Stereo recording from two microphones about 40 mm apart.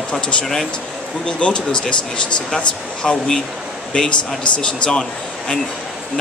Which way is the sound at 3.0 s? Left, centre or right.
Centre.